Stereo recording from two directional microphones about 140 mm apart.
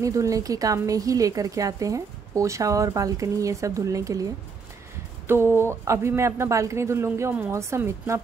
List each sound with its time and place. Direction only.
0.0 s a woman's voice: 25° right (ahead or behind)